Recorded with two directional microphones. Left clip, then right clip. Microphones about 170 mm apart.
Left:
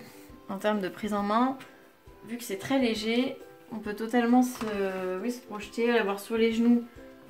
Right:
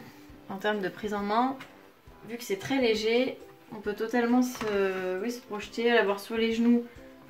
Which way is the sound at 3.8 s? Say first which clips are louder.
Even; 40° left (ahead or behind).